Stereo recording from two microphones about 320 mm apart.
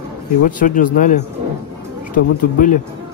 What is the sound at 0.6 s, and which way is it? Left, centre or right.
Speech, left.